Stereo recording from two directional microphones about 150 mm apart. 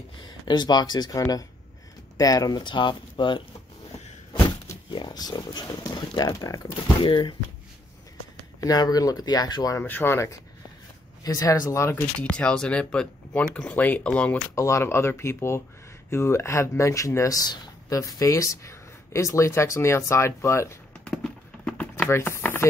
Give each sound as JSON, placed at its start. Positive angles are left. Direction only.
{"t": 0.5, "sound": "speech", "side_deg": 30}
{"t": 8.5, "sound": "speech", "side_deg": 25}
{"t": 9.8, "sound": "speech", "side_deg": 15}
{"t": 12.2, "sound": "speech", "side_deg": 5}
{"t": 14.5, "sound": "speech", "side_deg": 20}
{"t": 21.0, "sound": "clip-clop", "side_deg": 5}
{"t": 22.0, "sound": "chopping", "side_deg": 15}